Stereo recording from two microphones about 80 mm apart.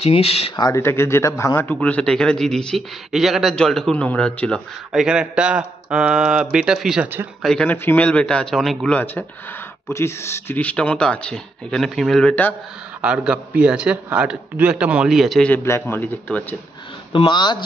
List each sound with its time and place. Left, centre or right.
0.7 s speech: left
1.7 s a man's voice: centre
3.9 s speech: centre
4.9 s a man's voice: centre
7.6 s speech: left
8.0 s speech: centre
8.9 s speech: left
10.6 s speech: centre
12.3 s speech: left
13.0 s a man's voice: centre
15.0 s a man's voice: centre
15.6 s speech: left
17.1 s speech: left